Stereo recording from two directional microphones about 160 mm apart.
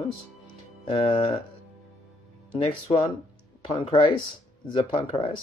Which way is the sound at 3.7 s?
30° left (ahead or behind).